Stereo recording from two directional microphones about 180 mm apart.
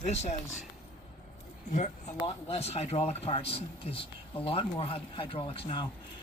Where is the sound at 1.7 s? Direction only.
40° left (ahead or behind).